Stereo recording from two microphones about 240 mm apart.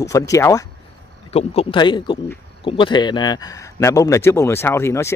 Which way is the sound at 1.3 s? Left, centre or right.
Left.